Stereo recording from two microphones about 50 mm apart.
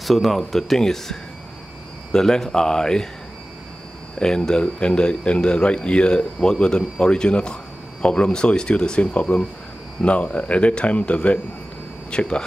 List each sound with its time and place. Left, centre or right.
0.0 s speech: centre
2.1 s speech: centre
4.2 s speech: centre